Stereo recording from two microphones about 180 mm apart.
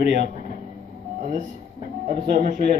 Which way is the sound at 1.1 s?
40° right (ahead or behind).